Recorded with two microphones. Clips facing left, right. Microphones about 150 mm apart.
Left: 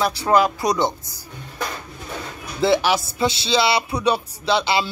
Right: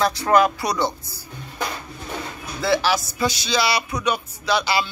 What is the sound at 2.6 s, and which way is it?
Speech, 20° left (ahead or behind).